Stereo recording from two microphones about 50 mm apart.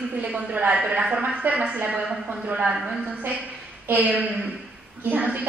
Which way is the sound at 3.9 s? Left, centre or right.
Right.